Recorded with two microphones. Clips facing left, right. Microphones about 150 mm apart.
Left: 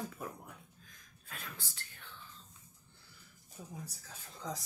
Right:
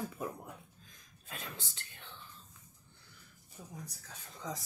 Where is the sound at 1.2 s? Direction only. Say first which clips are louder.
Right 3 dB; 20° right (ahead or behind).